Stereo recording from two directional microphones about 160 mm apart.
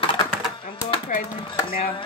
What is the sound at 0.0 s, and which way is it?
Typing, 35° left (ahead or behind).